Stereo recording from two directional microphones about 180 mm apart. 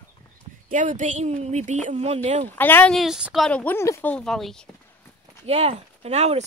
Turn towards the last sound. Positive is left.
turn(degrees=-40)  # may be behind; listen again after turning